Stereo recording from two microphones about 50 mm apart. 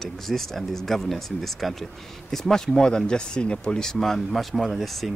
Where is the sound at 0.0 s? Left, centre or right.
Centre.